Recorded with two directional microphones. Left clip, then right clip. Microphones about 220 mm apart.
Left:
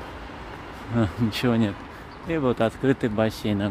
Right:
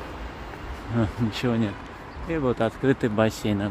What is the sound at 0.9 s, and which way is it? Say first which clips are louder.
Speech: left 2 dB; 10° left (ahead or behind).